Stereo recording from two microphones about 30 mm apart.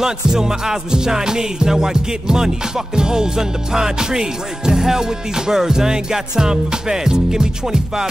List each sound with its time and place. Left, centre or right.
0.0 s music: centre